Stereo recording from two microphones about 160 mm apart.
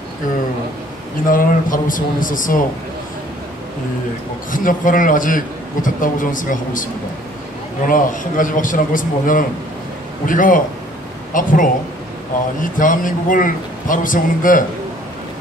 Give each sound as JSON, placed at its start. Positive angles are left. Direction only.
{"t": 1.3, "sound": "a man's voice", "side_deg": 60}
{"t": 4.5, "sound": "a man's voice", "side_deg": 55}
{"t": 12.7, "sound": "a man's voice", "side_deg": 55}